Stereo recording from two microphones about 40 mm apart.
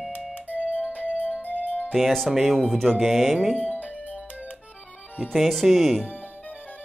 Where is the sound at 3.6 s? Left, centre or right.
Right.